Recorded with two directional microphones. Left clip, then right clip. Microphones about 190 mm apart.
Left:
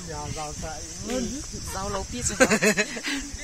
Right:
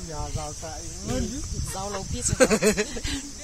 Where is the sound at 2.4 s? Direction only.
50° right (ahead or behind).